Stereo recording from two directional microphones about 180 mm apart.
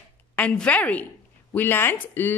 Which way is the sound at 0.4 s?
5° left (ahead or behind).